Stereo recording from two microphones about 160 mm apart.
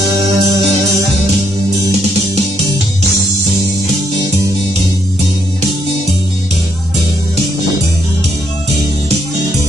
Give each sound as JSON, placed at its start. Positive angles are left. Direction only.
{"t": 0.3, "sound": "music", "side_deg": -30}